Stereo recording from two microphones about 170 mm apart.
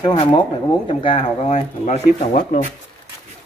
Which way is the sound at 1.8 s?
45° left (ahead or behind).